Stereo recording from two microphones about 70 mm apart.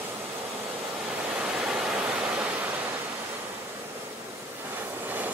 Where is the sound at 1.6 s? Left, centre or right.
Centre.